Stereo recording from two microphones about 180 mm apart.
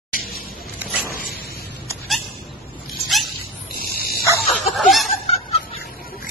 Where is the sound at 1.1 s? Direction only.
55° left (ahead or behind).